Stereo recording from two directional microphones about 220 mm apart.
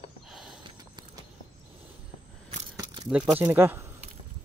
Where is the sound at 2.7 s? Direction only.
15° right (ahead or behind).